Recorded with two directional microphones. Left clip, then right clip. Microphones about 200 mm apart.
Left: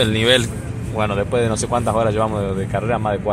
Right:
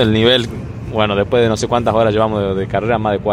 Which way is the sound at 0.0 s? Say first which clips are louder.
Right 3 dB; 55° right (ahead or behind).